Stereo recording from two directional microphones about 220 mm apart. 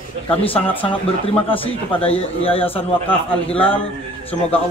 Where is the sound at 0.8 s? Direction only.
25° left (ahead or behind).